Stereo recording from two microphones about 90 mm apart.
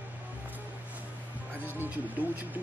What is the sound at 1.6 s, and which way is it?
Speech, 20° right (ahead or behind).